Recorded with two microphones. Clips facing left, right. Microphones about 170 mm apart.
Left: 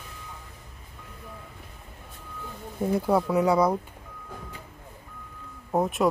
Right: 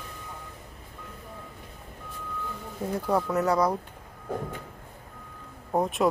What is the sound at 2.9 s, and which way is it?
Speech, 10° left (ahead or behind).